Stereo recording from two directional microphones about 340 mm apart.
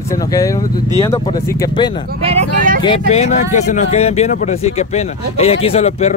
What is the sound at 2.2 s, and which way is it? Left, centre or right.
Vehicle, centre.